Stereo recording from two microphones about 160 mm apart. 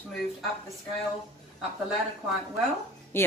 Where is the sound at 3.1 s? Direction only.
15° left (ahead or behind).